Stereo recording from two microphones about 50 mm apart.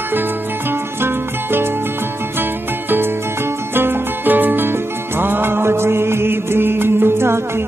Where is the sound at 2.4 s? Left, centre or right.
Right.